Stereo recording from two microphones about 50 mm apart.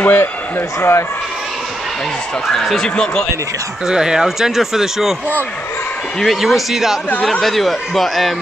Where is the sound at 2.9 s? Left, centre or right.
Centre.